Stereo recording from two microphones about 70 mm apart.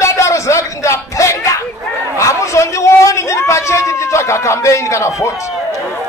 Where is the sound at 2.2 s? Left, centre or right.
Left.